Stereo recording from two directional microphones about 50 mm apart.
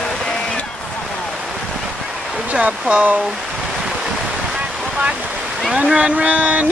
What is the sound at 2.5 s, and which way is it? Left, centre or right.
Speech, right.